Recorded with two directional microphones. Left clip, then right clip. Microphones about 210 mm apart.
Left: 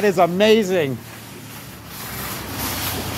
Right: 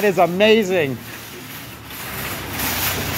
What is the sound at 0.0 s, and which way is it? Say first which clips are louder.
Speech: right 1 dB; 5° left (ahead or behind).